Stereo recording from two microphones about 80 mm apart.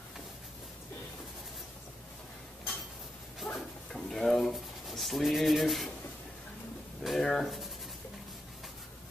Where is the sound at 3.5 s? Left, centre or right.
Centre.